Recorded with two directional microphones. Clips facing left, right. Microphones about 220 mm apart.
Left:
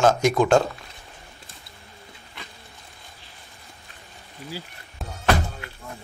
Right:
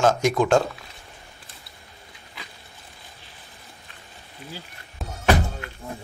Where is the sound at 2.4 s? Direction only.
Centre (ahead or behind).